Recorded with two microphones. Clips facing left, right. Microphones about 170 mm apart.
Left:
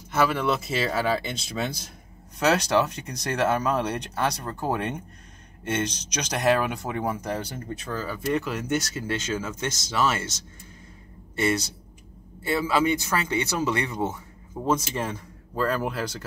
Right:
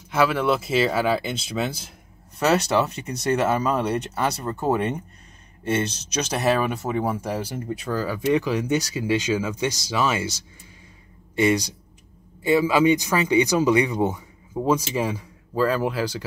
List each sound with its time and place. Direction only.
0.1 s speech: 5° right (ahead or behind)
6.2 s speech: 5° right (ahead or behind)